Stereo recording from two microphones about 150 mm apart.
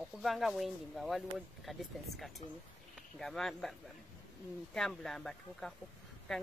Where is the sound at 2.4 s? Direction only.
45° left (ahead or behind).